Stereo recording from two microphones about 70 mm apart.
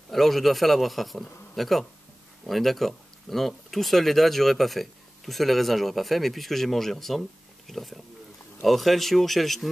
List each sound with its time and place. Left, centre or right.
0.1 s speech: centre